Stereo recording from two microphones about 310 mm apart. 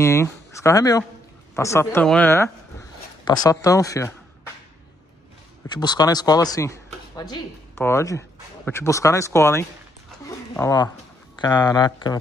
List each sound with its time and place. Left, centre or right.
0.0 s speech: centre
5.7 s speech: centre
10.2 s a sound: centre
11.4 s speech: centre